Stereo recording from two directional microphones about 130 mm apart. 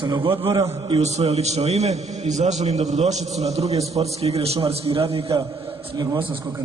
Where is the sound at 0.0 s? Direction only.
40° right (ahead or behind).